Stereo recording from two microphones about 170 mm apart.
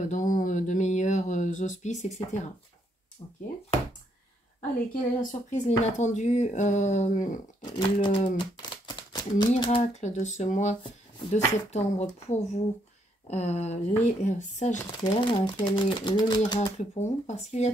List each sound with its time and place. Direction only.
0.0 s a sound: 50° left (ahead or behind)
5.2 s speech: 45° left (ahead or behind)
7.6 s speech: 25° left (ahead or behind)
8.4 s a sound: 25° left (ahead or behind)
9.6 s speech: 30° left (ahead or behind)
15.0 s speech: 30° left (ahead or behind)
16.5 s speech: 40° left (ahead or behind)